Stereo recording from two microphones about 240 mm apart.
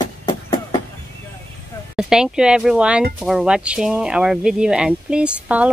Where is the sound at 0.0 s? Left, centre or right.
Centre.